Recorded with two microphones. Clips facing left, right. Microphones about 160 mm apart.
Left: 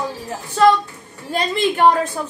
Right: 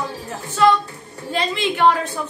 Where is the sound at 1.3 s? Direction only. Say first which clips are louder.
Left 3 dB; 45° left (ahead or behind).